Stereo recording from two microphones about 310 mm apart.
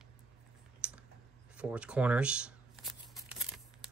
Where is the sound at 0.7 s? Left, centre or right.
Centre.